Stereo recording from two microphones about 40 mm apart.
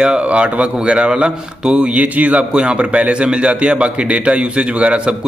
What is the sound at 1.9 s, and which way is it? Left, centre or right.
Speech, right.